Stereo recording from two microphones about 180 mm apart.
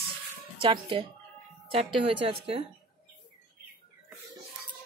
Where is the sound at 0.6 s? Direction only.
30° right (ahead or behind).